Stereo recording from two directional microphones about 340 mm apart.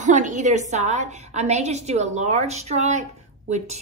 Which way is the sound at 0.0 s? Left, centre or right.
Right.